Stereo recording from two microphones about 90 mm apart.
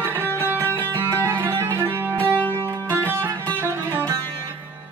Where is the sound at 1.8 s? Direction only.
25° right (ahead or behind).